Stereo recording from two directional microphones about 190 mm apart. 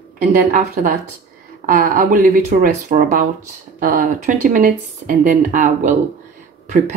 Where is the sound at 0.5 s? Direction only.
45° right (ahead or behind).